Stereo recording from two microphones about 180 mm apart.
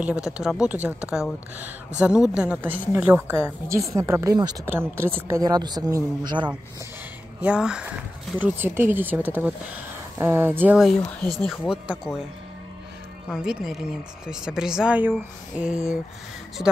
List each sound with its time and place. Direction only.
0.0 s a woman's voice: 5° right (ahead or behind); by 6.5 s 25° right (ahead or behind)
7.3 s a woman's voice: 5° right (ahead or behind)
10.8 s speech: centre (ahead or behind)
13.3 s speech: 5° right (ahead or behind)